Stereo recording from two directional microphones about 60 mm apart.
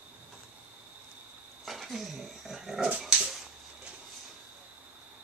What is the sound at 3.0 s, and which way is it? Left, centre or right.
Dog, centre.